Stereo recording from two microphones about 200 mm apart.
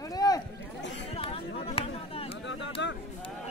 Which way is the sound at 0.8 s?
65° left (ahead or behind).